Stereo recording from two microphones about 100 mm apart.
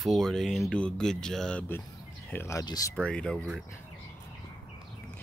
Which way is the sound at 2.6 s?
40° left (ahead or behind).